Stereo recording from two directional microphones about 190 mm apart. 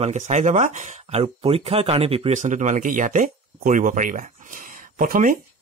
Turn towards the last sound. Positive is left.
turn(degrees=-45)  # may be behind; listen again after turning